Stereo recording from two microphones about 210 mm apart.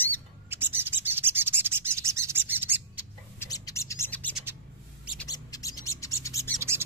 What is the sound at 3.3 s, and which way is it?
Bird, 15° left (ahead or behind).